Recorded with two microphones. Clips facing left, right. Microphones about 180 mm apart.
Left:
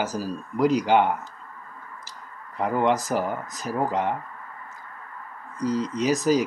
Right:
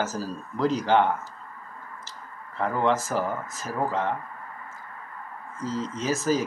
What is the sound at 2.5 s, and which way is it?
Speech, 15° left (ahead or behind).